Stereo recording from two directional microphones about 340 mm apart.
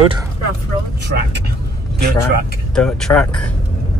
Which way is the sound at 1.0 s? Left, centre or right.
Right.